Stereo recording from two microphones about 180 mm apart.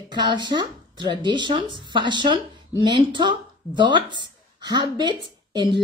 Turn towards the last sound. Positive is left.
turn(degrees=-25)  # may be behind; listen again after turning